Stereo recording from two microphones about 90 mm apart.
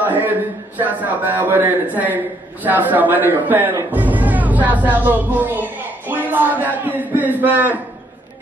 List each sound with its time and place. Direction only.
0.0 s a man's voice: 20° right (ahead or behind)